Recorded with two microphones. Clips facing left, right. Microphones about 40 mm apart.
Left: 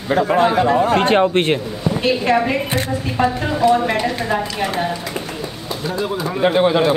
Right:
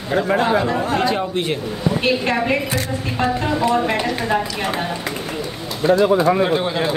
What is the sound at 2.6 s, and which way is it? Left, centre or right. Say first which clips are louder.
Speech: left 2 dB; left.